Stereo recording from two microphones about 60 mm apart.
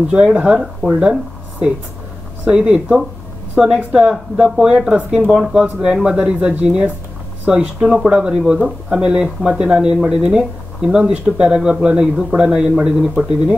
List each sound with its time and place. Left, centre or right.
0.1 s speech: centre
2.4 s speech: centre